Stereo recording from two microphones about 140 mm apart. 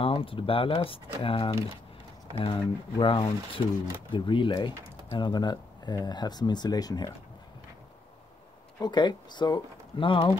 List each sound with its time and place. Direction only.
0.0 s speech: 40° left (ahead or behind)
8.7 s speech: 30° left (ahead or behind)